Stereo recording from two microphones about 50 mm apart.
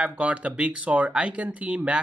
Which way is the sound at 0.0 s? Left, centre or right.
Right.